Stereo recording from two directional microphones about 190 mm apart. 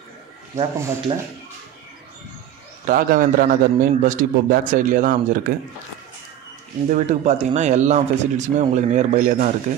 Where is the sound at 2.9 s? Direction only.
45° right (ahead or behind).